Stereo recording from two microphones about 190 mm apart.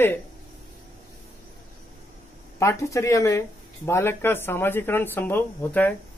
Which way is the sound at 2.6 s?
15° left (ahead or behind).